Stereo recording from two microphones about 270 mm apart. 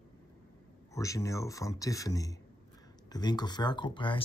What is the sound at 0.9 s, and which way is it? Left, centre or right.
Speech, centre.